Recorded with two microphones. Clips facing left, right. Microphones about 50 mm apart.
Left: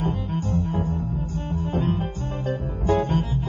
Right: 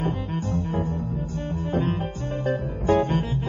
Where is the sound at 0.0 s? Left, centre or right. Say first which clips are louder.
Left 1 dB; right.